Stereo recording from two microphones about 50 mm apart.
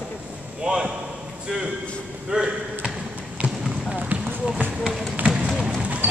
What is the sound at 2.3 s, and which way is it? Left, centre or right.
Speech, centre.